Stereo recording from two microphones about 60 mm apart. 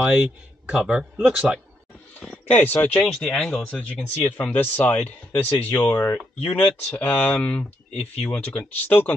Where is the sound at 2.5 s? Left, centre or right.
Left.